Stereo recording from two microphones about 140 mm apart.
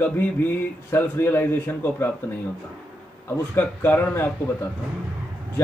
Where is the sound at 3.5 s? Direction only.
15° left (ahead or behind).